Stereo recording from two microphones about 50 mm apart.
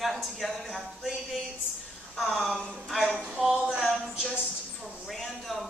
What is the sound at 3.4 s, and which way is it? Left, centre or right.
Speech, centre.